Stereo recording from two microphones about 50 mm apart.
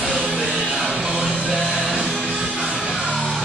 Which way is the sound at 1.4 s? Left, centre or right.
Centre.